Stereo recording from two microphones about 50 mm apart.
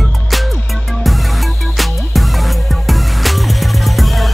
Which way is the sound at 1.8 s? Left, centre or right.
Centre.